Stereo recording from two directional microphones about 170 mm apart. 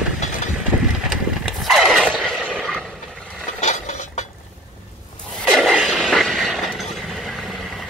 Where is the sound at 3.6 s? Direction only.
45° left (ahead or behind).